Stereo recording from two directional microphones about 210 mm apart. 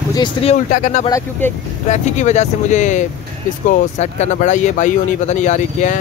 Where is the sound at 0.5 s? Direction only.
35° left (ahead or behind).